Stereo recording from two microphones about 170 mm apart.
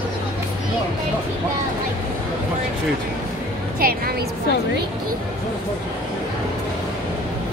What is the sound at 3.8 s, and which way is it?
Speech, 60° right (ahead or behind).